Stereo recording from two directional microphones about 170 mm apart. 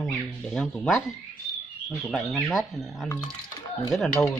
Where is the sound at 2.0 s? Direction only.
Centre (ahead or behind).